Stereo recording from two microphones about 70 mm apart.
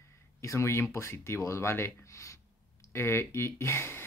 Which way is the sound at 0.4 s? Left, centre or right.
Left.